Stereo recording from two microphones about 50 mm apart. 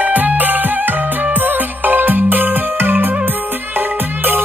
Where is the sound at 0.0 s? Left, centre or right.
Right.